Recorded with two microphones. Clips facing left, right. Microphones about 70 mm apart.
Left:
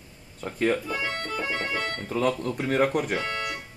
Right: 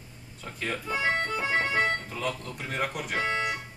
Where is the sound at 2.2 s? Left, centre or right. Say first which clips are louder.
Left 9 dB; left.